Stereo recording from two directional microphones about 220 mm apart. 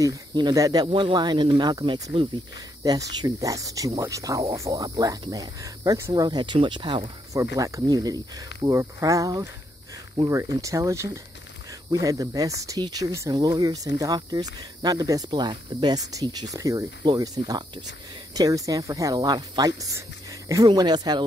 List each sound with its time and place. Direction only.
0.0 s speech: 15° right (ahead or behind)